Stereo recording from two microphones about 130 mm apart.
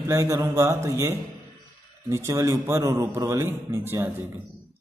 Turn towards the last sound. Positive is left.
turn(degrees=-15)  # may be behind; listen again after turning